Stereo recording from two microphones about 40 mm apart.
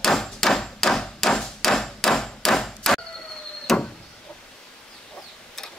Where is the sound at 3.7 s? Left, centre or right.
Centre.